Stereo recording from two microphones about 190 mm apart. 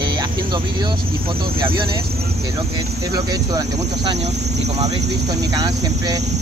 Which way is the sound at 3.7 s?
60° right (ahead or behind).